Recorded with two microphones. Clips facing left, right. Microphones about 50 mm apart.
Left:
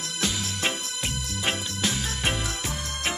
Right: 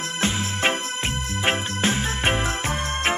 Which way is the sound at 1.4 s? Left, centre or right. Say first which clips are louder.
Right 5 dB; right.